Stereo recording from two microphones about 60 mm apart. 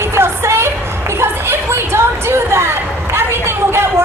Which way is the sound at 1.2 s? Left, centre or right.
Right.